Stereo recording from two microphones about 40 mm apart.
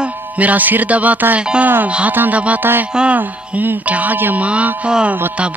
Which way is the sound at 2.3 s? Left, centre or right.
Right.